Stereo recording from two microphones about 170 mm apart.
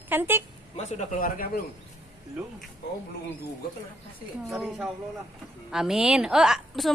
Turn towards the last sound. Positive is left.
turn(degrees=0)  # may be behind; listen again after turning